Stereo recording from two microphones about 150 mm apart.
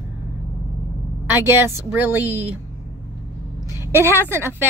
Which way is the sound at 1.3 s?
15° right (ahead or behind).